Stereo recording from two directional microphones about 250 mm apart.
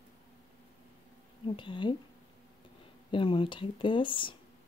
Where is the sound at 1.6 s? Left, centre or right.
Centre.